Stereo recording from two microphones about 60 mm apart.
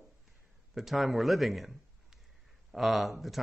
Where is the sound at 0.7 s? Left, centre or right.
Centre.